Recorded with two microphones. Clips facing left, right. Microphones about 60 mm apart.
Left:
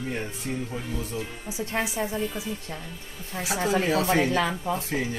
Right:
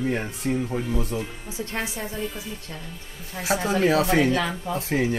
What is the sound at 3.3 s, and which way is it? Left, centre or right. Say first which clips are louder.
Speech: right 2 dB; centre.